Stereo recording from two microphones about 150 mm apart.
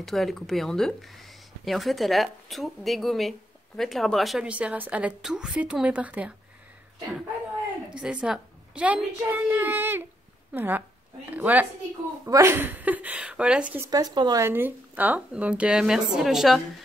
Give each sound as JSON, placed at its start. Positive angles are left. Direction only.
{"t": 0.0, "sound": "speech", "side_deg": 0}
{"t": 7.9, "sound": "a woman's voice", "side_deg": -5}
{"t": 13.8, "sound": "speech", "side_deg": -25}
{"t": 14.4, "sound": "a woman's voice", "side_deg": -15}